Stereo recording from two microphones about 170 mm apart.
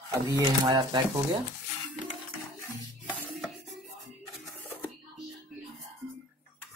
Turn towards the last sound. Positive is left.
turn(degrees=10)  # may be behind; listen again after turning